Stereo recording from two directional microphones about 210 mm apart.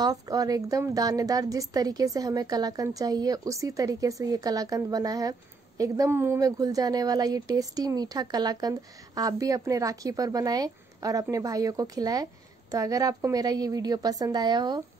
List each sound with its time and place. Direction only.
0.0 s a woman's voice: 15° right (ahead or behind)